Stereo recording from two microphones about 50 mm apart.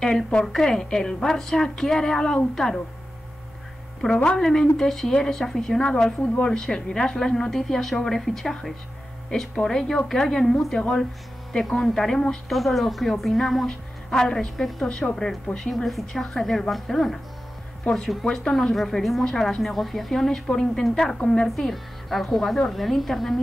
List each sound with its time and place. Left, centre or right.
0.0 s a woman's voice: centre
4.0 s a woman's voice: centre
15.7 s a woman's voice: centre